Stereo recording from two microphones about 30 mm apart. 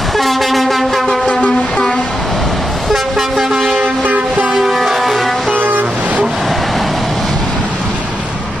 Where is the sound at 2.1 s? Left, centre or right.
Centre.